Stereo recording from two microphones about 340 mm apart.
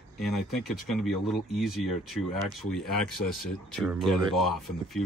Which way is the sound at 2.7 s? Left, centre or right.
Centre.